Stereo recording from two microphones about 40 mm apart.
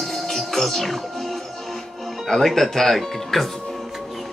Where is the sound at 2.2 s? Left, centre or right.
Centre.